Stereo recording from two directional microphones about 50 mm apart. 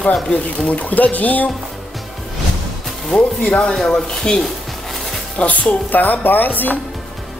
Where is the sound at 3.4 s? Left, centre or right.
Left.